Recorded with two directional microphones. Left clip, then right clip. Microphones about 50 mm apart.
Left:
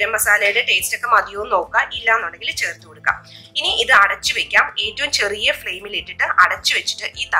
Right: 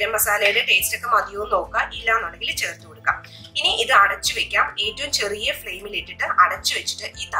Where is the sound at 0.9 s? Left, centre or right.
Left.